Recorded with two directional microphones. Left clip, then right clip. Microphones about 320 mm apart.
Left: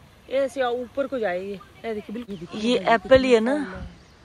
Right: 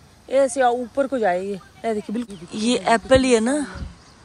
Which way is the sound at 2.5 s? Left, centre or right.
Centre.